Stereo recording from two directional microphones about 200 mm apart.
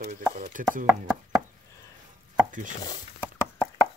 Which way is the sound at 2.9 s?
10° left (ahead or behind).